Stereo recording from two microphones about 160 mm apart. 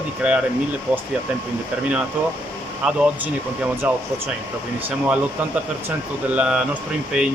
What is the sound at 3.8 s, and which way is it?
Speech, 10° right (ahead or behind).